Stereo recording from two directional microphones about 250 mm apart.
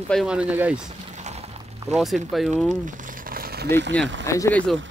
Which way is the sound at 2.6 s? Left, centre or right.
Right.